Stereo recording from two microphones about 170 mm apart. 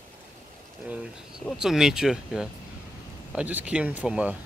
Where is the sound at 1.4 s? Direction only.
5° right (ahead or behind).